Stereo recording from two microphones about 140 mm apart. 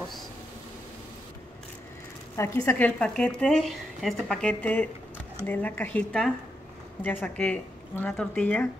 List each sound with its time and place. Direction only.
2.3 s speech: 20° left (ahead or behind)
3.0 s speech: 5° left (ahead or behind)